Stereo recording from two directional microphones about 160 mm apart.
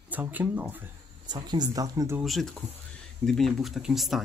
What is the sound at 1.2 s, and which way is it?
Speech, 25° right (ahead or behind).